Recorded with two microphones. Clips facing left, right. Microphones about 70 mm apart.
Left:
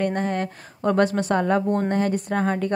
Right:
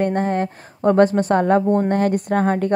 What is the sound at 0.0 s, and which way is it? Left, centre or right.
A woman's voice, right.